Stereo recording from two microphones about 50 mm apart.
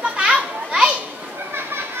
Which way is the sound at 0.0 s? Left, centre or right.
Centre.